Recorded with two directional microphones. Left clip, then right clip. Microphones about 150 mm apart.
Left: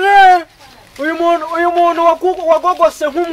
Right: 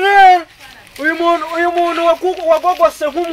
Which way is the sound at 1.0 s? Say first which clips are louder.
Even; 5° left (ahead or behind).